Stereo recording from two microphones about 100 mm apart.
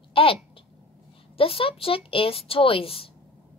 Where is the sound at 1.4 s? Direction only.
70° left (ahead or behind).